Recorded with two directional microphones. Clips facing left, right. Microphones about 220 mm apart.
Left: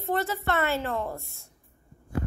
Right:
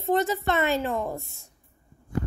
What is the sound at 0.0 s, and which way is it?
A child's voice, 20° right (ahead or behind).